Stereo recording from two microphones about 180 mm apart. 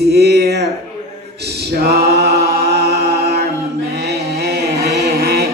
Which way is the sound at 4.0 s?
60° right (ahead or behind).